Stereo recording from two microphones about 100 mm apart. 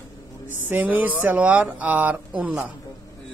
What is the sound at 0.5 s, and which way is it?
Speech, 15° right (ahead or behind).